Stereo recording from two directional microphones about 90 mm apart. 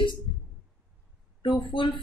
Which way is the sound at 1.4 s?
65° left (ahead or behind).